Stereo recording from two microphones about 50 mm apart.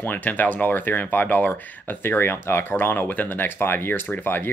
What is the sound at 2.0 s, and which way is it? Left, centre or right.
Speech, left.